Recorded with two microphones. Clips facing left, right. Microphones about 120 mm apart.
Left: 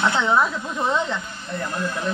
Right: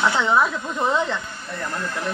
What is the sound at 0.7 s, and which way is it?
Speech, 15° right (ahead or behind).